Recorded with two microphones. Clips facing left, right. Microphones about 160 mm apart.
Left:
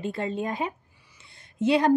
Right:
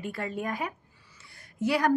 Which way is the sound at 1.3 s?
25° left (ahead or behind).